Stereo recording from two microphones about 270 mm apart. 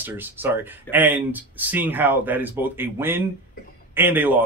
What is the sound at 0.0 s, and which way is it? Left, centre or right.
Speech, centre.